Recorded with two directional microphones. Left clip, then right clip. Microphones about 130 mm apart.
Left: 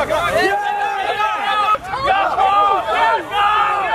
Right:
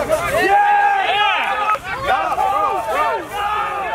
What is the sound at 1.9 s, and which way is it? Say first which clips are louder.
Battle cry: left 4 dB; 30° left (ahead or behind).